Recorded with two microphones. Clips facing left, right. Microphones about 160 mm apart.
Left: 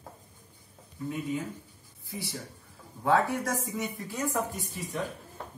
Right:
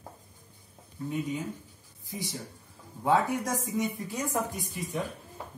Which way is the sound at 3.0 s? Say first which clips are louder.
Even; 15° right (ahead or behind).